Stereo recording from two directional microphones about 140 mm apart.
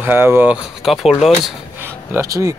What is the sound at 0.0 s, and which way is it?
Speech, 15° right (ahead or behind).